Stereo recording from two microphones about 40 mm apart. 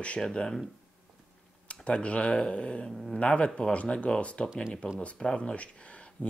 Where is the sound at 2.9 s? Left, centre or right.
Centre.